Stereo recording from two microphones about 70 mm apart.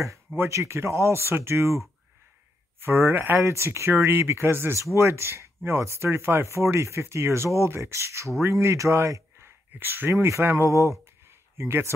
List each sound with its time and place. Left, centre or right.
0.4 s speech: right
2.8 s speech: right
9.8 s speech: right
10.1 s speech: right
10.4 s speech: right
10.7 s speech: right
11.2 s a sound: right